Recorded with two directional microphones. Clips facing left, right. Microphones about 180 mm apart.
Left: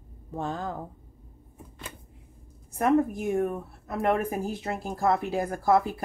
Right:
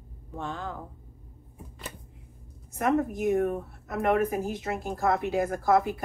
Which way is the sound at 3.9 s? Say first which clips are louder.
Right 1 dB; 30° left (ahead or behind).